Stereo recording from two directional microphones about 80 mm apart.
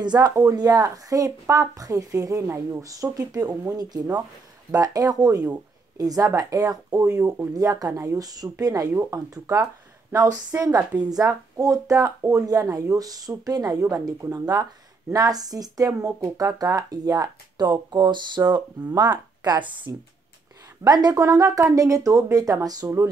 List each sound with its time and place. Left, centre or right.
0.0 s speech: right
10.5 s a woman's voice: right
18.4 s a woman's voice: right
20.8 s speech: right